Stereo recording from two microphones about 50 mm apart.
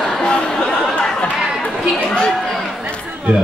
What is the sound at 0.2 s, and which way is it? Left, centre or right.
Chatter, left.